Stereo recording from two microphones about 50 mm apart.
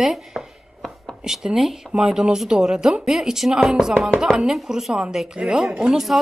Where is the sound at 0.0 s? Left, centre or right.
Centre.